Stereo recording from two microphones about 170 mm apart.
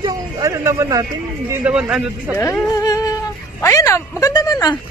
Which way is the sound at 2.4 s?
20° left (ahead or behind).